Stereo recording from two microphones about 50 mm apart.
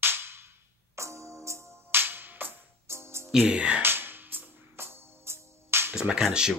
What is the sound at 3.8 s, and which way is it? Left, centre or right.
Music, right.